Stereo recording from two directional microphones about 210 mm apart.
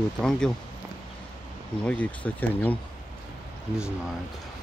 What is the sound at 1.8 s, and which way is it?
Speech, 5° left (ahead or behind).